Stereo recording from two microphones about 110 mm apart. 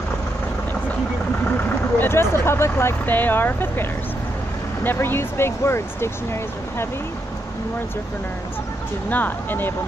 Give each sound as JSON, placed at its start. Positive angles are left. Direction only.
{"t": 2.0, "sound": "speech", "side_deg": 20}
{"t": 4.8, "sound": "speech", "side_deg": 20}
{"t": 9.1, "sound": "speech", "side_deg": 15}